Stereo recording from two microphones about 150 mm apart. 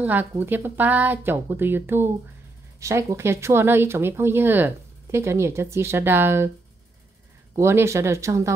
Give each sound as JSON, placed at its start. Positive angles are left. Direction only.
{"t": 0.0, "sound": "speech", "side_deg": -10}
{"t": 7.5, "sound": "speech", "side_deg": -20}